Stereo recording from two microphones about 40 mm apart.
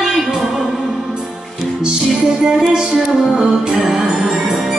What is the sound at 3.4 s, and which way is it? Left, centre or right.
Music, centre.